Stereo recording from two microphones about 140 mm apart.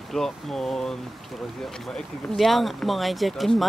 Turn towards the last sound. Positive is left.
turn(degrees=0)  # may be behind; listen again after turning